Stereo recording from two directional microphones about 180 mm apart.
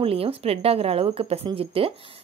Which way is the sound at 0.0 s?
30° right (ahead or behind).